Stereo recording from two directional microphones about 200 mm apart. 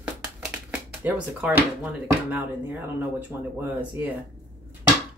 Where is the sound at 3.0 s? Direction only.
10° right (ahead or behind).